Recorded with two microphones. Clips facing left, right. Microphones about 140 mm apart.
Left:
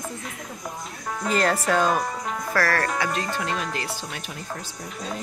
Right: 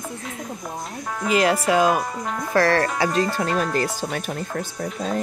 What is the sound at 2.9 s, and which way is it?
Speech, 35° right (ahead or behind).